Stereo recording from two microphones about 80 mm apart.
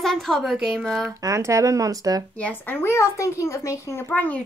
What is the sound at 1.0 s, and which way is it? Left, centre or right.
Speech, right.